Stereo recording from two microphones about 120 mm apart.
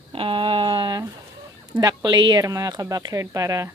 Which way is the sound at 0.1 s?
45° right (ahead or behind).